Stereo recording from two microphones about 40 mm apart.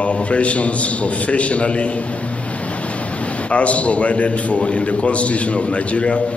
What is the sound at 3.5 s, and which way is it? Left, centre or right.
A man's voice, left.